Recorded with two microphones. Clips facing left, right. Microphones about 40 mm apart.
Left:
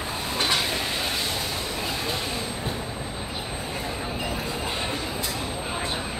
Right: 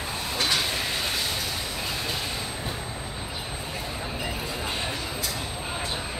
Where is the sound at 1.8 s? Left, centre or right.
Centre.